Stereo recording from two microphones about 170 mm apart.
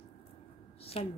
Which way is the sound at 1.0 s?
35° left (ahead or behind).